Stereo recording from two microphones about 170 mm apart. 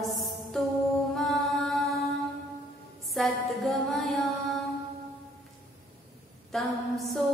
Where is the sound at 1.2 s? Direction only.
Centre (ahead or behind).